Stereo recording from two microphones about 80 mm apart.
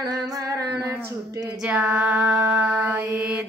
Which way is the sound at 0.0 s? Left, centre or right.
Right.